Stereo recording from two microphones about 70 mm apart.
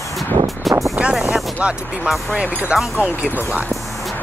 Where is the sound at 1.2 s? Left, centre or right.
Centre.